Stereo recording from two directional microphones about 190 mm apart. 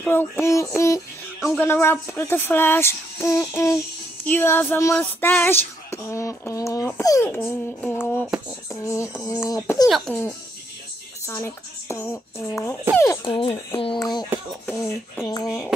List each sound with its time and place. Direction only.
0.0 s female singing: 10° left (ahead or behind)
9.8 s speech: centre (ahead or behind)
11.2 s female singing: 15° left (ahead or behind)
13.2 s speech: 30° left (ahead or behind)
15.1 s female singing: 20° left (ahead or behind)